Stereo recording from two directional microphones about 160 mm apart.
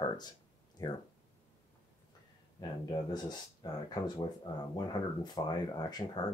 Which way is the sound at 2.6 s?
25° left (ahead or behind).